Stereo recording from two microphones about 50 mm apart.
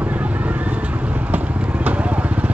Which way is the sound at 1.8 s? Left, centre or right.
Right.